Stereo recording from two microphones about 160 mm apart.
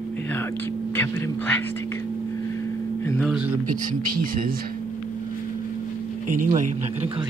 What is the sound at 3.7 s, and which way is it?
Speech, 60° right (ahead or behind).